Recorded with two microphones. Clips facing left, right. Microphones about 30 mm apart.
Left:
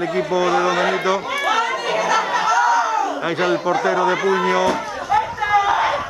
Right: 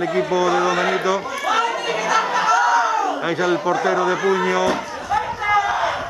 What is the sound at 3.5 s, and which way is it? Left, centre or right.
Speech, centre.